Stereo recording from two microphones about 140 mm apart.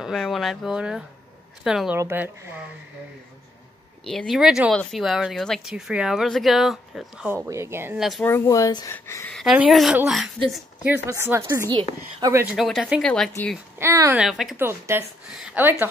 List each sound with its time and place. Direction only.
0.0 s speech: centre (ahead or behind)
2.0 s speech: 15° right (ahead or behind)
4.0 s speech: 5° left (ahead or behind)
7.2 s speech: 20° right (ahead or behind)
8.2 s speech: 20° left (ahead or behind)
9.3 s speech: 5° right (ahead or behind)
11.1 s a woman's voice: 20° right (ahead or behind)
12.5 s speech: centre (ahead or behind)
13.7 s speech: 20° right (ahead or behind)
14.1 s speech: centre (ahead or behind)
14.6 s speech: 15° right (ahead or behind)